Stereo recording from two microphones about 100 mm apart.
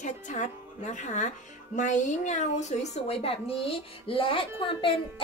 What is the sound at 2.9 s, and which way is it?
Speech, 85° left.